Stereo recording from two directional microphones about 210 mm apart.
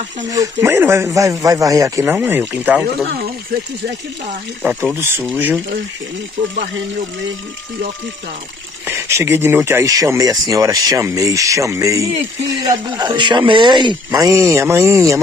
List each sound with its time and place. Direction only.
0.3 s speech: 15° right (ahead or behind)
4.6 s speech: 10° right (ahead or behind)
8.8 s speech: 10° right (ahead or behind)